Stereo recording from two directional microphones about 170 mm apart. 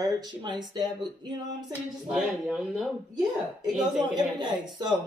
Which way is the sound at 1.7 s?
5° right (ahead or behind).